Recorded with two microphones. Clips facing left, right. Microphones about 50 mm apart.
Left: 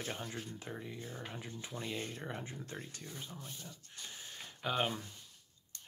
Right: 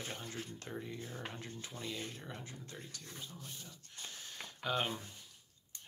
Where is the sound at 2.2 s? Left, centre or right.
Left.